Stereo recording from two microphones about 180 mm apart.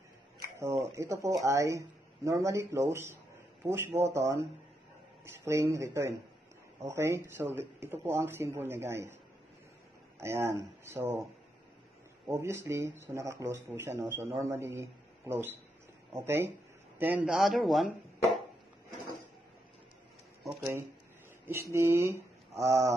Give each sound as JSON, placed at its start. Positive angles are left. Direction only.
{"t": 0.6, "sound": "speech", "side_deg": -15}
{"t": 10.2, "sound": "speech", "side_deg": -15}
{"t": 12.3, "sound": "speech", "side_deg": -15}
{"t": 21.5, "sound": "speech", "side_deg": -15}